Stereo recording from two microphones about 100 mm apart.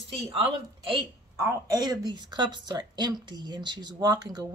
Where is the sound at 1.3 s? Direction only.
35° right (ahead or behind).